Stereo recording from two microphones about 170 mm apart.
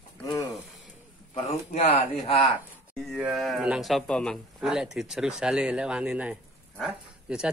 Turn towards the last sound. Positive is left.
turn(degrees=-5)  # may be behind; listen again after turning